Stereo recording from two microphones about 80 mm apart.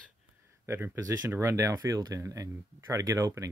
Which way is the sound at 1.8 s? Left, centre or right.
Right.